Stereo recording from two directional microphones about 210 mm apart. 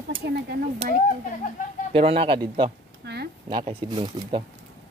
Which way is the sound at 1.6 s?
40° left (ahead or behind).